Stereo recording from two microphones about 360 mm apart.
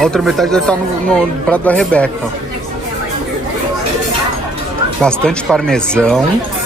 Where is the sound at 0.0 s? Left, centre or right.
Centre.